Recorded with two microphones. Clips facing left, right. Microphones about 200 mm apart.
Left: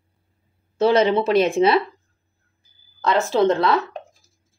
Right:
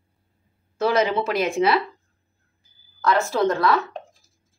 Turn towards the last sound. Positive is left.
turn(degrees=25)  # may be behind; listen again after turning